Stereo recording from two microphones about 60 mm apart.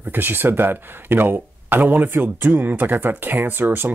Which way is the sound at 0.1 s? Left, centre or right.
Right.